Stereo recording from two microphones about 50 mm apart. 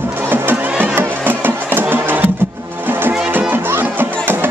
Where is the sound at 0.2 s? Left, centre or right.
Right.